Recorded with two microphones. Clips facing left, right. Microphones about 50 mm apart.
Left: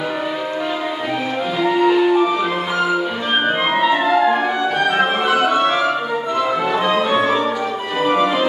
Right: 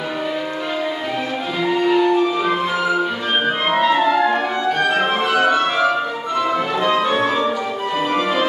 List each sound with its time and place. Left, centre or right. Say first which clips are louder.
1.6 s music: left 2 dB; centre